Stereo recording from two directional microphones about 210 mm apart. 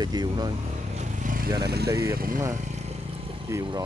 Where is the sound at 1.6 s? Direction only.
50° right (ahead or behind).